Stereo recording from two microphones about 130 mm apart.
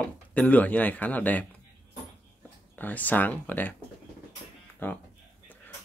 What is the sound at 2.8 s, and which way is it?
Speech, 15° left (ahead or behind).